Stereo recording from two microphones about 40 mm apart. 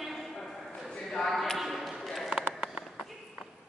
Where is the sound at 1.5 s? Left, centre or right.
Centre.